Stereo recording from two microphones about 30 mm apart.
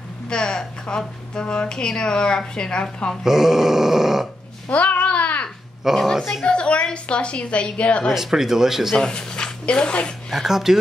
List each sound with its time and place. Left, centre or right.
0.3 s speech: left
3.3 s grunt: centre
4.7 s babbling: left
5.9 s grunt: centre
6.4 s a woman's voice: left
8.1 s grunt: centre
8.9 s speech: left
10.3 s grunt: centre